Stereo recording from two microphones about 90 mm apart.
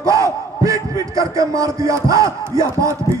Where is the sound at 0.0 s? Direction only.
35° right (ahead or behind).